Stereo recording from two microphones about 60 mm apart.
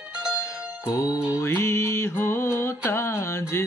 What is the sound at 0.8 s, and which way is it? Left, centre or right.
Music, left.